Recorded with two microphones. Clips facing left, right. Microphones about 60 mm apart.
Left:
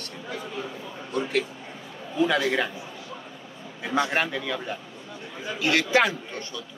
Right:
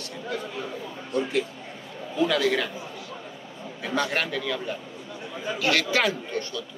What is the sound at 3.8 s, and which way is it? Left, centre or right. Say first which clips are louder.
A man's voice: left 2 dB; centre.